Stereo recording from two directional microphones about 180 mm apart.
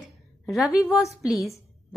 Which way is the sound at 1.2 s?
Centre (ahead or behind).